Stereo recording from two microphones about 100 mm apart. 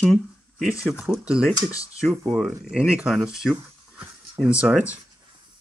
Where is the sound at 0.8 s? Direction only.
5° right (ahead or behind).